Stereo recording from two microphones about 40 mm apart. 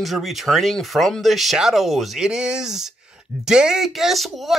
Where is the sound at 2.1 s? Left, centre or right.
Centre.